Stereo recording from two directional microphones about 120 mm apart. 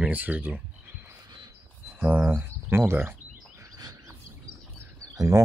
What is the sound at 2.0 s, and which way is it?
Speech, 15° right (ahead or behind).